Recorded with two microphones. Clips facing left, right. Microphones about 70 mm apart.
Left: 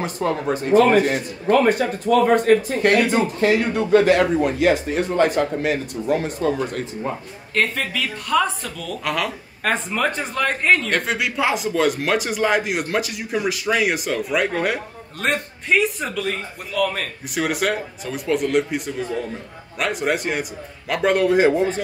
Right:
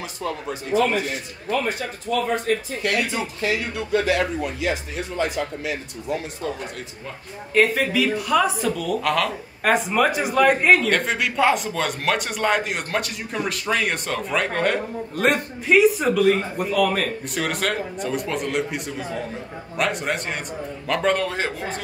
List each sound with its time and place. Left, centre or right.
0.0 s speech: left
7.5 s speech: centre
10.9 s a man's voice: centre